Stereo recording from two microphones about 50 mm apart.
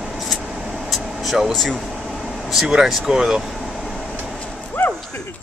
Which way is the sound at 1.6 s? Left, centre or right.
Centre.